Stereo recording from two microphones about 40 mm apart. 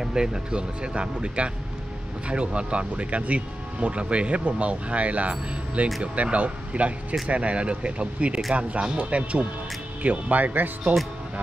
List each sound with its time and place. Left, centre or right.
0.0 s speech: centre; by 10.7 s right